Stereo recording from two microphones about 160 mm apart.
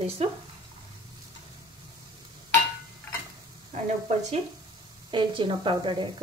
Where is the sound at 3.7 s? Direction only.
45° right (ahead or behind).